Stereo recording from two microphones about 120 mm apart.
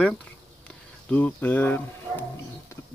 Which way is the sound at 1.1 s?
15° left (ahead or behind).